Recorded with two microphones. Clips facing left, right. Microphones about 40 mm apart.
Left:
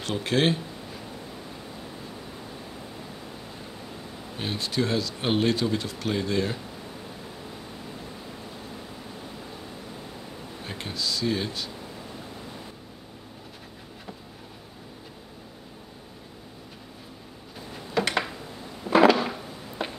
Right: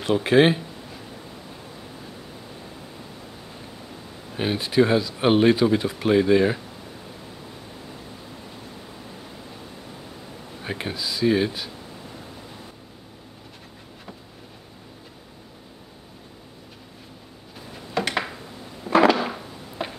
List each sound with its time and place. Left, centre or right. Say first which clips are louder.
0.0 s speech: right 7 dB; centre
4.4 s speech: right 8 dB; centre
10.6 s speech: right 4 dB; right
17.9 s a sound: even; centre